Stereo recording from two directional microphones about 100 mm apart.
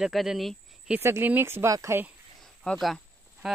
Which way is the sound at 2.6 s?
5° left (ahead or behind).